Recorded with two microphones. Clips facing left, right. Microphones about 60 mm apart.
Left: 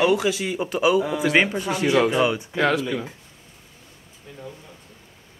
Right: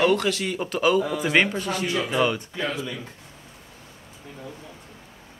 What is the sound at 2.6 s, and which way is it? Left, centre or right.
Speech, left.